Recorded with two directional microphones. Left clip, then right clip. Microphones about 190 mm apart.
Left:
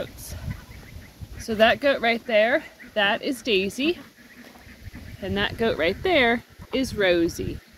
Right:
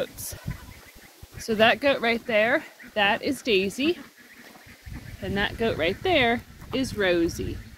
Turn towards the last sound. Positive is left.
turn(degrees=15)  # may be behind; listen again after turning